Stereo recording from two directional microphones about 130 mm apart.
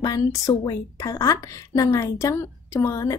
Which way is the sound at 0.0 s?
30° left (ahead or behind).